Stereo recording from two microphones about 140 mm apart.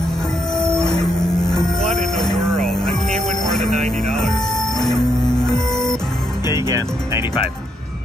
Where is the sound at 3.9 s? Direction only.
5° left (ahead or behind).